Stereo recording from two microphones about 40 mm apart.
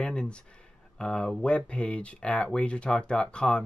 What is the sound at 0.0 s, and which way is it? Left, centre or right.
Speech, left.